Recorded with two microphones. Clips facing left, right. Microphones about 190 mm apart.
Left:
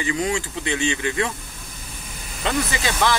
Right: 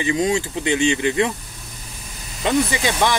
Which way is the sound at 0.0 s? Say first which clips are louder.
Right 4 dB; 20° right (ahead or behind).